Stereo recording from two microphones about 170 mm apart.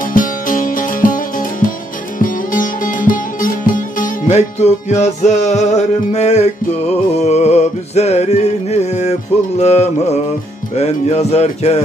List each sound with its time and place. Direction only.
0.0 s music: 50° left (ahead or behind)
2.1 s sitar: 50° left (ahead or behind)
7.2 s music: 40° left (ahead or behind)